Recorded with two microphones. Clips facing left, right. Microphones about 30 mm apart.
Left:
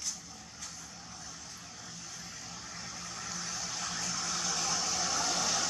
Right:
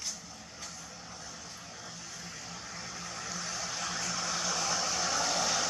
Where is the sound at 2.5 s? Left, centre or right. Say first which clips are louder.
Right 2 dB; centre.